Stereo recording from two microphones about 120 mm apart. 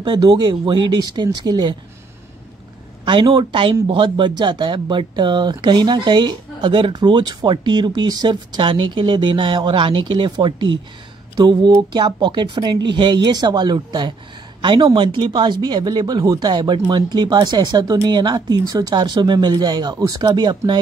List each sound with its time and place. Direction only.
0.0 s speech: 35° right (ahead or behind)
3.1 s speech: 40° right (ahead or behind)